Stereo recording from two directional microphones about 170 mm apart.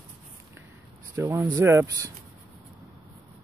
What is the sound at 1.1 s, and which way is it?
Speech, 15° right (ahead or behind).